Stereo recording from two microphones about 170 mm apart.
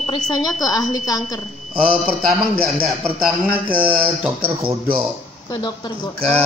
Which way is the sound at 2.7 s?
5° right (ahead or behind).